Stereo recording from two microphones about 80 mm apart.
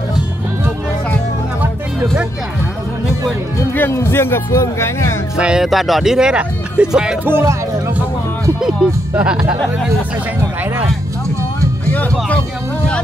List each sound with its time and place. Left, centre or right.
3.7 s speech: left
5.4 s speech: centre
7.2 s speech: right
9.1 s speech: centre
11.9 s music: left